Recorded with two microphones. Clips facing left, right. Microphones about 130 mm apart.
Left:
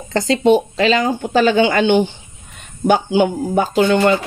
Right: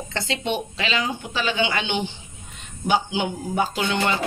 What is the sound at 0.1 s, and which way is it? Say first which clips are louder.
Speech: left 14 dB; 40° left (ahead or behind).